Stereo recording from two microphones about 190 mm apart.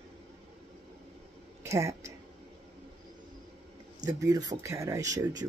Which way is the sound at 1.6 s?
15° right (ahead or behind).